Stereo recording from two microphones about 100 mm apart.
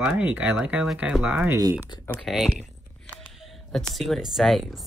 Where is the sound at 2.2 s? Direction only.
Centre (ahead or behind).